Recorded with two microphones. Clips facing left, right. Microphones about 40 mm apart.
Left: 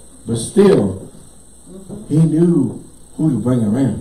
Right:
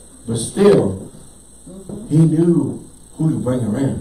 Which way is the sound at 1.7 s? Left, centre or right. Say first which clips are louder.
Even; left.